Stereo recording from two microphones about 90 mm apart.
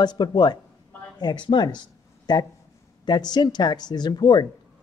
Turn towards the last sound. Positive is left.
turn(degrees=50)  # may be behind; listen again after turning